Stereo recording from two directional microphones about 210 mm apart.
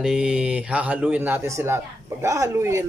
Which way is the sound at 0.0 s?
5° right (ahead or behind).